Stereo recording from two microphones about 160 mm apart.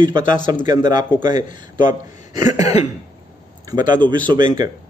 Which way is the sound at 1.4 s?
55° left (ahead or behind).